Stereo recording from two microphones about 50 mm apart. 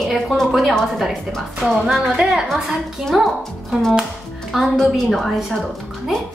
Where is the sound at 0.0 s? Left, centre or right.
Centre.